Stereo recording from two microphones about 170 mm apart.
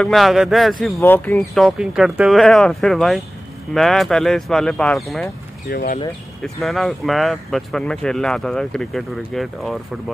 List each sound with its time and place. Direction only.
0.0 s speech: centre (ahead or behind)
1.0 s speech: 10° left (ahead or behind)
1.6 s speech: 5° right (ahead or behind)
5.7 s speech: 60° left (ahead or behind)
6.4 s speech: centre (ahead or behind)